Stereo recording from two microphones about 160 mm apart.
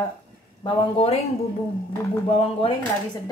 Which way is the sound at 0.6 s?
35° left (ahead or behind).